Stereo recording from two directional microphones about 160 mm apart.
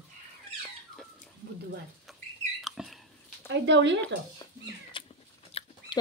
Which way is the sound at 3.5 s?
90° right.